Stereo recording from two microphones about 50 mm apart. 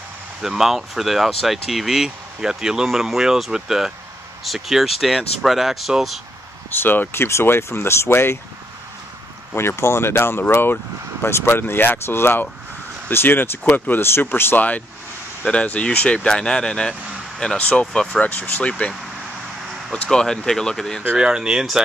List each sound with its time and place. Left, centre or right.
0.4 s speech: centre
6.7 s speech: left
9.6 s speech: left
15.4 s speech: left
19.9 s speech: centre
21.2 s speech: centre